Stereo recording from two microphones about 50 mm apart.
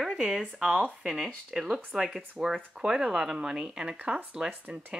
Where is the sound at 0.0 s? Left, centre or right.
Centre.